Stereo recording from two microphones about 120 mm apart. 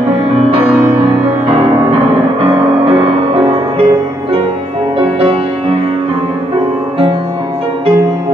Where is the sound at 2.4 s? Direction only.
50° right (ahead or behind).